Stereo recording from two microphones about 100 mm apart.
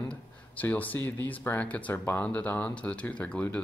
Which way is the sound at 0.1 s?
15° left (ahead or behind).